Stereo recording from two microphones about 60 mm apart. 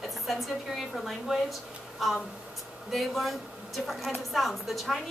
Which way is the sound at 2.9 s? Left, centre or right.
Centre.